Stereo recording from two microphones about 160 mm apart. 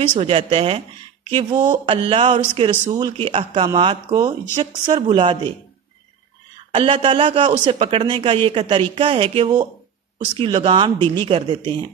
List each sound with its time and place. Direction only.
0.1 s speech: 40° right (ahead or behind)
1.9 s speech: 35° right (ahead or behind)
4.1 s speech: 25° right (ahead or behind)
6.7 s speech: 35° right (ahead or behind)